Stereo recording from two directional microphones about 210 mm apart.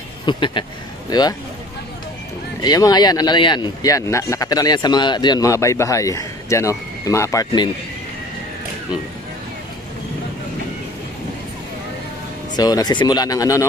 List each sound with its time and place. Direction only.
0.2 s speech: 20° left (ahead or behind)
2.6 s speech: 20° left (ahead or behind)
12.5 s speech: 20° left (ahead or behind)